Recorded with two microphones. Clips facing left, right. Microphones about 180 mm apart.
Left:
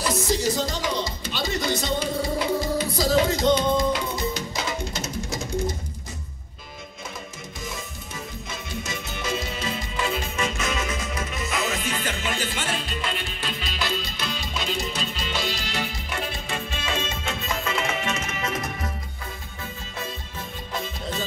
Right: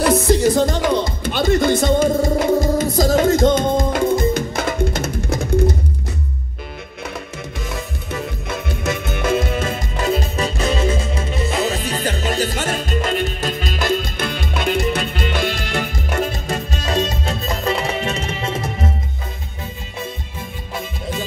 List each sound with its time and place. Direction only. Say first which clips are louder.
0.0 s music: right 9 dB; 60° right (ahead or behind)
7.6 s music: right 6 dB; 65° right (ahead or behind); by 18.9 s 30° right (ahead or behind)